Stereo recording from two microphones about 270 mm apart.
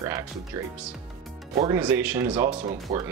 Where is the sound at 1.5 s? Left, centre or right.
Centre.